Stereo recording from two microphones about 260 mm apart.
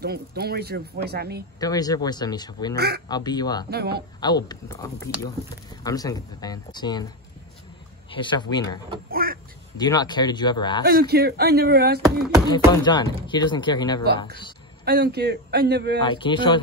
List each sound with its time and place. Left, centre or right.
0.0 s speech: right
1.6 s speech: centre
2.7 s speech: right
3.1 s speech: centre
3.7 s speech: right
4.2 s speech: centre
8.1 s speech: centre
9.1 s a sound: right
9.8 s speech: centre
10.8 s speech: right
12.4 s speech: centre
14.9 s speech: right
16.0 s speech: centre